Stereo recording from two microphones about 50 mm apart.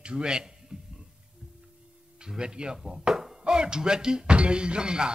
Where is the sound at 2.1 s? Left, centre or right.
Centre.